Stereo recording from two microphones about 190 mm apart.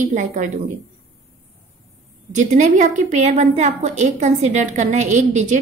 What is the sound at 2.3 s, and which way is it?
A woman's voice, 40° right (ahead or behind).